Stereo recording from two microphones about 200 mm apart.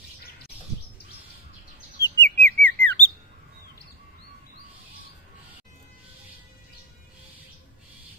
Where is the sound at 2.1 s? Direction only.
60° left (ahead or behind).